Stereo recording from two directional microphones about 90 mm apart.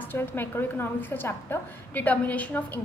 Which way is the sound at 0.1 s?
25° left (ahead or behind).